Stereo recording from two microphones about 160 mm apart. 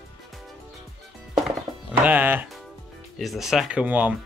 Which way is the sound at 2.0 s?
10° right (ahead or behind).